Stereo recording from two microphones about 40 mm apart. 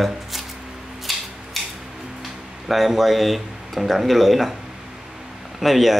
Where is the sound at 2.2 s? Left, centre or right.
Centre.